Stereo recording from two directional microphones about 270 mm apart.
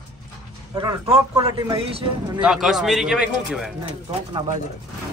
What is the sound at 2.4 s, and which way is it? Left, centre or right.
A man's voice, centre.